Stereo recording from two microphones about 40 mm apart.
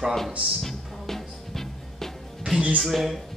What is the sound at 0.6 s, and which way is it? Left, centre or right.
Music, centre.